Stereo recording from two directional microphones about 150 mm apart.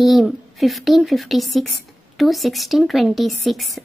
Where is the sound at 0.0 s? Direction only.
Centre (ahead or behind).